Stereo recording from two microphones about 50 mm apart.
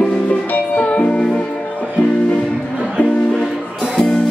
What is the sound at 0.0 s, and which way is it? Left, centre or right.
Music, left.